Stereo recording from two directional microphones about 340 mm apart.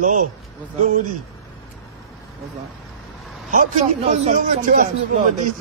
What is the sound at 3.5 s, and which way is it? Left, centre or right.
A man's voice, right.